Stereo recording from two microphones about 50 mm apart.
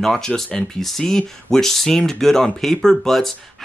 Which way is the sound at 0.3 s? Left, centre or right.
Left.